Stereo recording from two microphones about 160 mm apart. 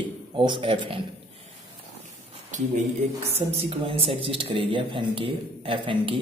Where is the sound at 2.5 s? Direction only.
50° right (ahead or behind).